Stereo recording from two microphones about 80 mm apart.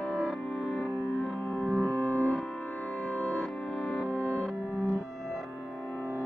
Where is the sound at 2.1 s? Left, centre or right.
Centre.